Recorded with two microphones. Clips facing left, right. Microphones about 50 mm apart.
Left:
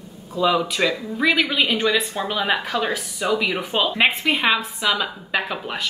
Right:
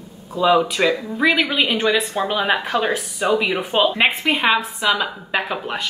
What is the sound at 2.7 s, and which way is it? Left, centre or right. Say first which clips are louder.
Speech: right 3 dB; right.